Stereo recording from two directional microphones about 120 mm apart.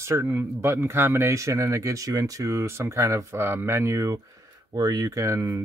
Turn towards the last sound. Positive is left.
turn(degrees=-25)  # may be behind; listen again after turning